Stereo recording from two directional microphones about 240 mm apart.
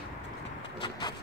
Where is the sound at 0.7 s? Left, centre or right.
Centre.